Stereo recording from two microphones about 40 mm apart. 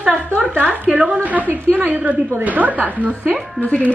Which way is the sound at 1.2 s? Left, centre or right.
Right.